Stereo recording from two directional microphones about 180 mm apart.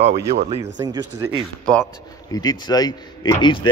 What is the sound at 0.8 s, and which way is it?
Speech, 20° right (ahead or behind).